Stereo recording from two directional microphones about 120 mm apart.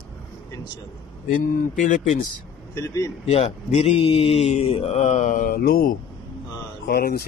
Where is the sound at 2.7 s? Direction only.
25° left (ahead or behind).